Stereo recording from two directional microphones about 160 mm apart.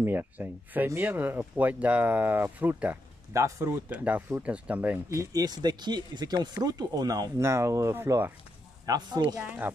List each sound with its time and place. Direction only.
0.0 s speech: 15° right (ahead or behind)
8.8 s speech: 25° right (ahead or behind)